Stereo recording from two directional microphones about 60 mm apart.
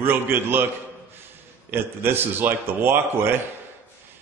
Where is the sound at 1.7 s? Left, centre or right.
Right.